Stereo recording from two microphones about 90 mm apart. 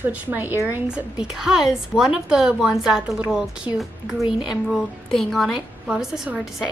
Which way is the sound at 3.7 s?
55° left (ahead or behind).